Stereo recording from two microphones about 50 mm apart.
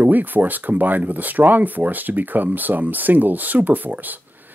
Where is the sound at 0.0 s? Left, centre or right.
Right.